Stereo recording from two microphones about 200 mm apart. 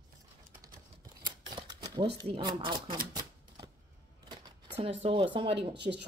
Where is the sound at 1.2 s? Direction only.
25° right (ahead or behind).